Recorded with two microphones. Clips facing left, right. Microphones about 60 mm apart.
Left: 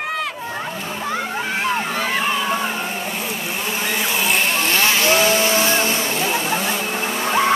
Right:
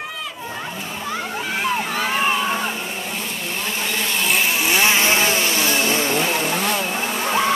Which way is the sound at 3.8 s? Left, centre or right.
Centre.